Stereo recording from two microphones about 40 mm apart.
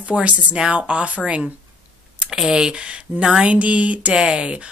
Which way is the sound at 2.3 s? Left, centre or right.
Centre.